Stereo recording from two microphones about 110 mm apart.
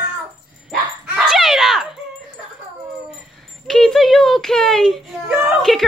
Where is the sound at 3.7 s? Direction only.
5° left (ahead or behind).